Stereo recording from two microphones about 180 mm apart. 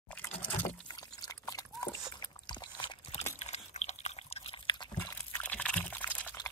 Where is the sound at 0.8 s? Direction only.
20° left (ahead or behind).